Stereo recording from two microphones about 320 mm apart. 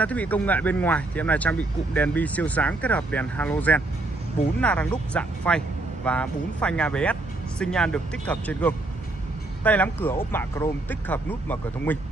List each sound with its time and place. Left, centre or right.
0.0 s speech: centre